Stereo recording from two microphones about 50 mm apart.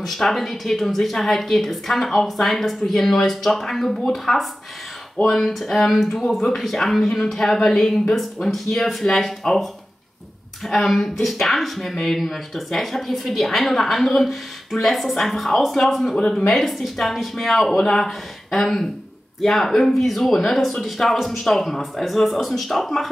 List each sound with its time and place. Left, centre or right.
0.0 s a woman's voice: centre
16.2 s speech: centre
16.4 s a woman's voice: centre